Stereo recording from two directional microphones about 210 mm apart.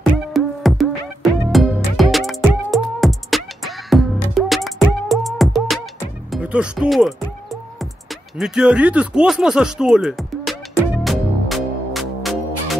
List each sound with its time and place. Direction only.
0.0 s music: centre (ahead or behind)
6.3 s speech: 5° right (ahead or behind)
11.1 s music: centre (ahead or behind)